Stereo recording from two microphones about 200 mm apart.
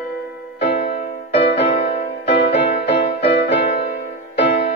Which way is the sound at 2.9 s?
60° left (ahead or behind).